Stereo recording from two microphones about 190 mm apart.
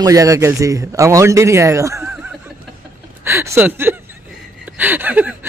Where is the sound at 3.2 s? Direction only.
15° right (ahead or behind).